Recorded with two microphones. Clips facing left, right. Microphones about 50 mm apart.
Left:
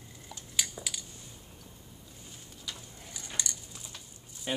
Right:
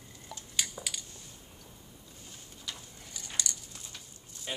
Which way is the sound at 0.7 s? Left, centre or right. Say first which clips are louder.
Even; centre.